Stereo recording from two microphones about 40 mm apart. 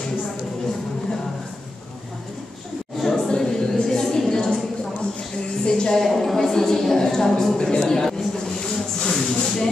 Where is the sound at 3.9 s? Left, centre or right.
Centre.